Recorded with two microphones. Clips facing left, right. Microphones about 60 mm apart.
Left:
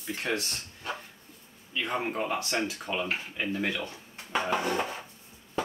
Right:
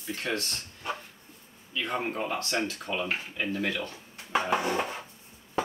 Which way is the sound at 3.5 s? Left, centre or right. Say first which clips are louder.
Even; centre.